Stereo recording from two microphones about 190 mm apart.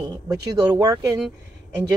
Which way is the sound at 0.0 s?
20° right (ahead or behind).